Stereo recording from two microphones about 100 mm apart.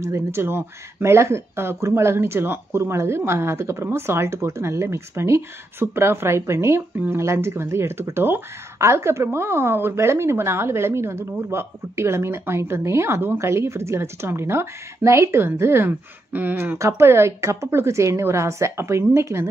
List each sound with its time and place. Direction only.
0.0 s speech: 25° right (ahead or behind)